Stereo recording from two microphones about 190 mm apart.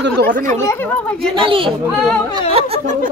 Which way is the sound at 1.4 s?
30° right (ahead or behind).